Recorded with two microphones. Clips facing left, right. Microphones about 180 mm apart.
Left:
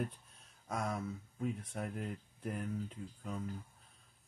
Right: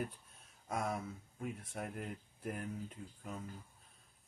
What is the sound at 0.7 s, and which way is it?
Speech, 5° right (ahead or behind).